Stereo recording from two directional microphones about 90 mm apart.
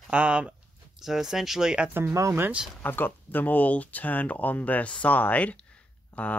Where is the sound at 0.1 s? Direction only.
15° right (ahead or behind).